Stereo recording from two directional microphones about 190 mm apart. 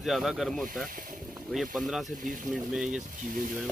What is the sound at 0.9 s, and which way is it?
Speech, 45° right (ahead or behind).